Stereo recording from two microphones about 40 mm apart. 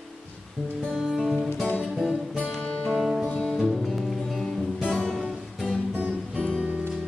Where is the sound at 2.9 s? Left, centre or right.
Centre.